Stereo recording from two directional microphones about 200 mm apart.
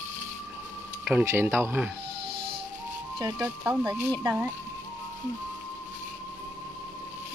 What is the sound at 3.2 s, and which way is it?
Speech, 20° right (ahead or behind).